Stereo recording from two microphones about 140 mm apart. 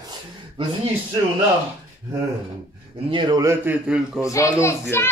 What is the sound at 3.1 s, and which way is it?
Speech, 35° right (ahead or behind).